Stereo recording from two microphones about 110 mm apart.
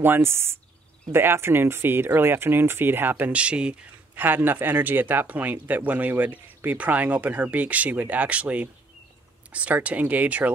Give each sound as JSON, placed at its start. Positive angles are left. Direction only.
{"t": 0.0, "sound": "speech", "side_deg": -20}